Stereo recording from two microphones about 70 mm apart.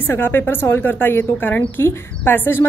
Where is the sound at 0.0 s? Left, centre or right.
Left.